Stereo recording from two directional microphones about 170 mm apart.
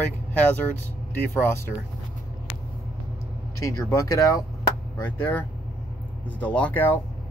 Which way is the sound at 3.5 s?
20° left (ahead or behind).